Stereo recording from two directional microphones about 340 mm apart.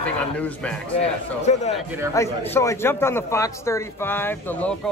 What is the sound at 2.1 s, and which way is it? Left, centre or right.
A man's voice, centre.